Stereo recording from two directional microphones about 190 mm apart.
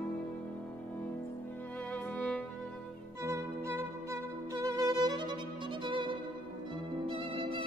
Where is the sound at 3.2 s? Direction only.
15° right (ahead or behind).